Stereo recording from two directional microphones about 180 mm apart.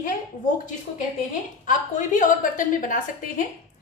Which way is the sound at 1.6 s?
45° left (ahead or behind).